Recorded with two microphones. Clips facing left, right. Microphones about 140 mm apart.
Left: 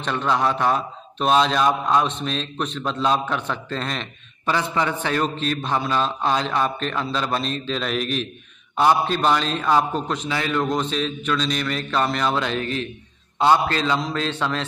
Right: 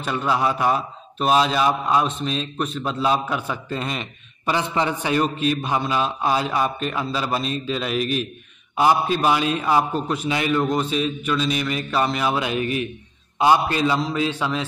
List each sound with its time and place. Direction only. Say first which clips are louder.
0.0 s a man's voice: even; 5° right (ahead or behind)